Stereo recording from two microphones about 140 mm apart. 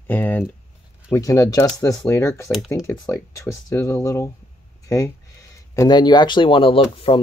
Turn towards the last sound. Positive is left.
turn(degrees=40)  # may be behind; listen again after turning